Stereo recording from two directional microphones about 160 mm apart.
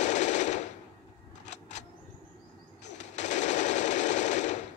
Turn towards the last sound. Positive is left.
turn(degrees=45)  # may be behind; listen again after turning